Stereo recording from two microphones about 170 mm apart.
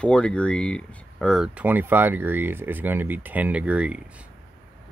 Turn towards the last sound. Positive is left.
turn(degrees=-5)  # may be behind; listen again after turning